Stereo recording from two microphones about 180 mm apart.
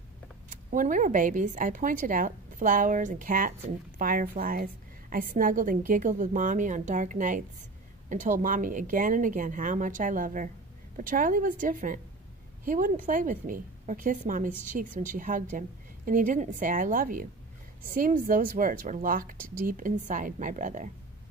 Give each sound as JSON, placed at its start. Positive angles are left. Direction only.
{"t": 0.5, "sound": "a woman's voice", "side_deg": -45}